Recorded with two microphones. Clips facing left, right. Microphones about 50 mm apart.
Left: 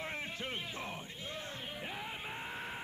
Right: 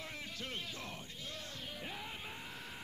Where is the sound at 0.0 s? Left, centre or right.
Left.